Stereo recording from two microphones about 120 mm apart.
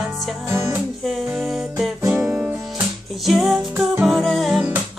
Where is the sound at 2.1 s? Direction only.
15° right (ahead or behind).